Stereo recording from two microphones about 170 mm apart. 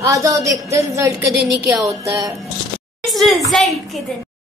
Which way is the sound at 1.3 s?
70° right (ahead or behind).